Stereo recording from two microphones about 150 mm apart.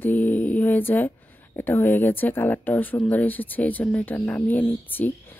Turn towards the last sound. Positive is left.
turn(degrees=10)  # may be behind; listen again after turning